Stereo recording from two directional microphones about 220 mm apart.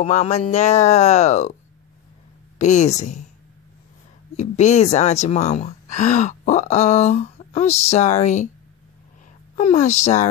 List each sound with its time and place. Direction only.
0.0 s a woman's voice: 30° left (ahead or behind)
2.6 s a woman's voice: 30° left (ahead or behind)
4.4 s a woman's voice: 30° left (ahead or behind)
9.6 s a woman's voice: 30° left (ahead or behind)